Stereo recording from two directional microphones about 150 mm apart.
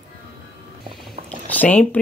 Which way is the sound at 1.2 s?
10° left (ahead or behind).